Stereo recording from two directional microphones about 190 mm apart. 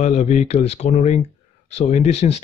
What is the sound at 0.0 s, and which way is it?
Speech, 35° left (ahead or behind).